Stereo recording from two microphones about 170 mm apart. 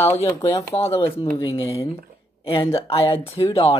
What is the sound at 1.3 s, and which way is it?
Speech, 20° left (ahead or behind).